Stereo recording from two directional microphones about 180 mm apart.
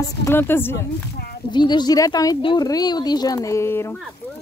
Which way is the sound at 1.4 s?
25° left (ahead or behind).